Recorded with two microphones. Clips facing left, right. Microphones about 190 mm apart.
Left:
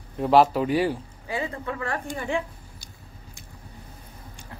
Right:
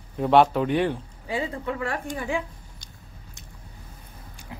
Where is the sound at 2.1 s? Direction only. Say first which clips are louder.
Left 2 dB; 5° right (ahead or behind).